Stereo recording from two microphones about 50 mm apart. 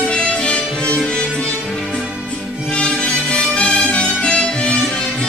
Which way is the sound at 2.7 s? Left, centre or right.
Centre.